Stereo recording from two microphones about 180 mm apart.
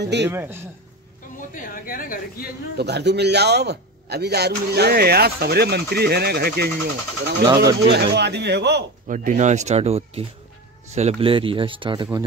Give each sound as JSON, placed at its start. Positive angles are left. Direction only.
{"t": 0.0, "sound": "speech", "side_deg": -70}
{"t": 0.3, "sound": "speech", "side_deg": -10}
{"t": 1.5, "sound": "speech", "side_deg": 50}
{"t": 2.8, "sound": "a man's voice", "side_deg": -70}
{"t": 7.4, "sound": "speech", "side_deg": -20}
{"t": 7.9, "sound": "speech", "side_deg": -70}
{"t": 9.0, "sound": "speech", "side_deg": -45}